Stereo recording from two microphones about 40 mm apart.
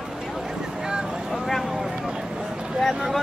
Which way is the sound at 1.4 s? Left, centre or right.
Centre.